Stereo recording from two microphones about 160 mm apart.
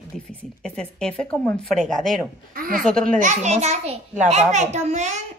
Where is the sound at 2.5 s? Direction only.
65° right (ahead or behind).